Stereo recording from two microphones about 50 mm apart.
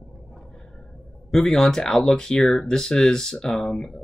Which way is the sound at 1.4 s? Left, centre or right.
Centre.